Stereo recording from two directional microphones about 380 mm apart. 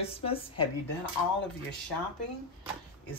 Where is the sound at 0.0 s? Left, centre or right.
Centre.